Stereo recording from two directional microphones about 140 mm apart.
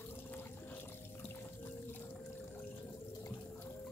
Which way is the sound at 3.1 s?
25° left (ahead or behind).